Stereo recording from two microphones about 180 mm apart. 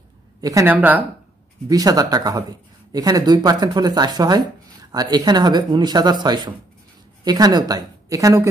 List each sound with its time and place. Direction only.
0.4 s speech: 20° right (ahead or behind)
1.7 s speech: 20° right (ahead or behind)